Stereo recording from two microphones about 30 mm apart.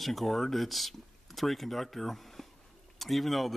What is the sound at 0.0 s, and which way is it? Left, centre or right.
Speech, centre.